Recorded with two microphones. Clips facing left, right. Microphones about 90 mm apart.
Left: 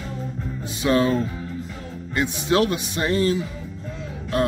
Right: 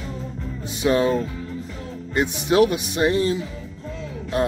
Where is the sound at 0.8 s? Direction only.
20° right (ahead or behind).